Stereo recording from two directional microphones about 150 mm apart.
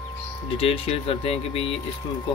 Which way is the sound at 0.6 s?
40° left (ahead or behind).